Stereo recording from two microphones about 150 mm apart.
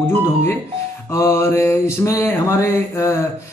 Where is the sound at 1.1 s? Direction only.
20° left (ahead or behind).